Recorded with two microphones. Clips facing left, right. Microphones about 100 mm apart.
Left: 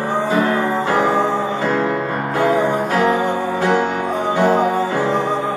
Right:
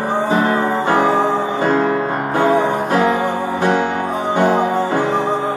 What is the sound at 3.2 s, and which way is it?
Music, 15° right (ahead or behind).